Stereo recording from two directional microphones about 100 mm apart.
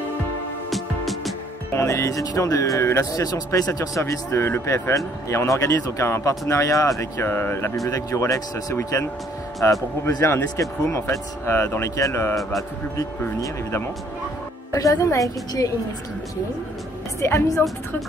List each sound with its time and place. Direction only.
0.7 s music: centre (ahead or behind)
1.7 s speech: 30° left (ahead or behind)
13.4 s speech: 30° left (ahead or behind)
17.2 s speech: 25° left (ahead or behind)